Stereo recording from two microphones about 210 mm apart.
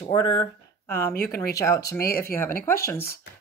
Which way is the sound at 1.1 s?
45° left (ahead or behind).